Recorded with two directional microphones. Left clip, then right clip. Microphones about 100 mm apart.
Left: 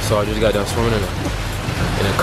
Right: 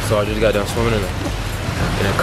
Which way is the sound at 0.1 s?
Centre (ahead or behind).